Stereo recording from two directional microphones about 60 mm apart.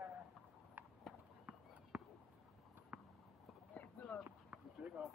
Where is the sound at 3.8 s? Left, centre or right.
Left.